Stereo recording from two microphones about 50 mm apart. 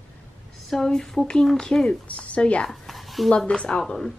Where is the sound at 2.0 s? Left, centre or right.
Left.